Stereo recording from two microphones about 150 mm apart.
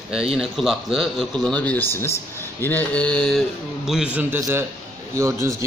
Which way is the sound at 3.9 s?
5° right (ahead or behind).